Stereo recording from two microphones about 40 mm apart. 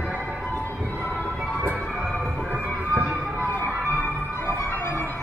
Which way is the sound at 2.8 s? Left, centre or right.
Right.